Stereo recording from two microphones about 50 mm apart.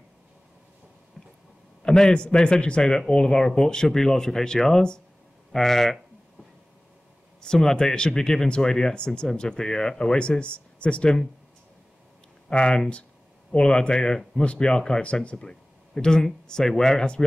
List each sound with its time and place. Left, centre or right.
1.8 s speech: centre
7.4 s speech: centre
12.4 s speech: centre
15.3 s speech: centre